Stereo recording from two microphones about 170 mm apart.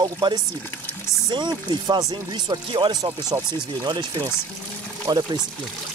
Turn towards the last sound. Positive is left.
turn(degrees=-25)  # may be behind; listen again after turning